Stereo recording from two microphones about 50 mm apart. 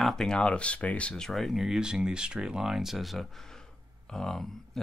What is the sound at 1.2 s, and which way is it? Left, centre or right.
Speech, centre.